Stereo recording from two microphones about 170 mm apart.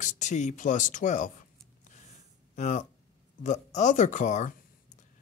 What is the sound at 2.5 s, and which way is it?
Speech, 45° left (ahead or behind).